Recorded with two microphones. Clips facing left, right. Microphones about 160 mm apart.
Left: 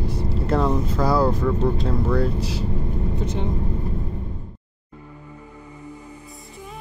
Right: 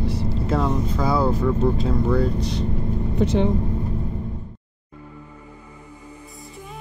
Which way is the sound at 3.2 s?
80° right.